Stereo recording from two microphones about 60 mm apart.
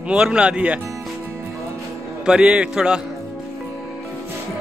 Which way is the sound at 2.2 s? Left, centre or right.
Centre.